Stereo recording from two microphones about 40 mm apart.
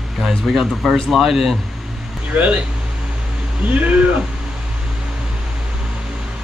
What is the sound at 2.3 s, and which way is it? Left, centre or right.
Speech, right.